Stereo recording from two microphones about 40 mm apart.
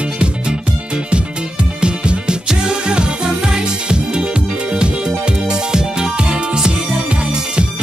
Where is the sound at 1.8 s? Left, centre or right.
Right.